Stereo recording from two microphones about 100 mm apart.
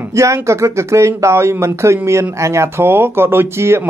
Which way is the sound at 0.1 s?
30° right (ahead or behind).